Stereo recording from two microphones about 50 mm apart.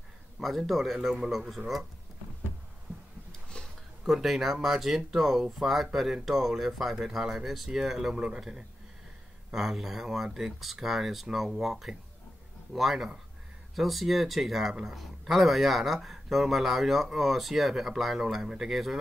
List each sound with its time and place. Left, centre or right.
0.4 s a man's voice: centre
3.3 s a sound: centre
4.0 s speech: centre